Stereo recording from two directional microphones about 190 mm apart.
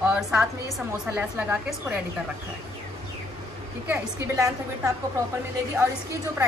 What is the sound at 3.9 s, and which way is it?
A woman's voice, 15° right (ahead or behind).